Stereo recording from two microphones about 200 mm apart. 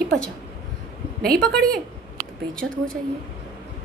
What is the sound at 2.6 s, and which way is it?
Speech, 70° right (ahead or behind).